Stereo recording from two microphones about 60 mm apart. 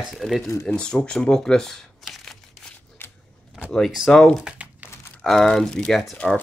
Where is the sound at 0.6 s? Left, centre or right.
Centre.